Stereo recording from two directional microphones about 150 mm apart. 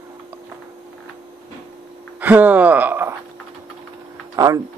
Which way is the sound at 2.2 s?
10° right (ahead or behind).